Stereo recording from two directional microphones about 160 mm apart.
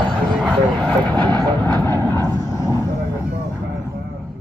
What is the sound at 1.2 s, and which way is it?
Vehicle, 25° right (ahead or behind).